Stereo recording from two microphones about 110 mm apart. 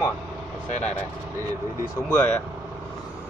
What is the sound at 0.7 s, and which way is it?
Speech, 90° left.